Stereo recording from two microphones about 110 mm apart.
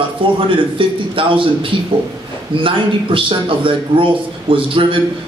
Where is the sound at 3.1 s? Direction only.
50° right (ahead or behind).